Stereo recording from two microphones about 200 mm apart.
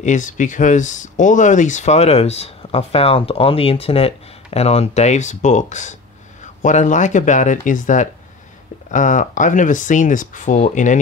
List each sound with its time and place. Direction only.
0.0 s speech: 40° left (ahead or behind)